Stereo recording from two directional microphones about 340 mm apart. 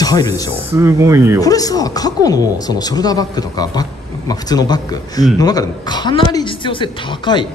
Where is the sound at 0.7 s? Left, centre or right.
Centre.